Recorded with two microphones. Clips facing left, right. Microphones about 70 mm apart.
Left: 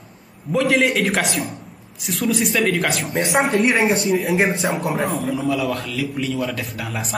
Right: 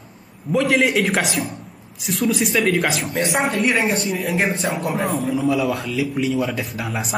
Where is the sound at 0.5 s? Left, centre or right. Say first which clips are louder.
Even; centre.